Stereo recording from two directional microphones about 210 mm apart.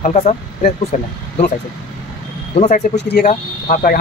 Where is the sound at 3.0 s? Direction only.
50° left (ahead or behind).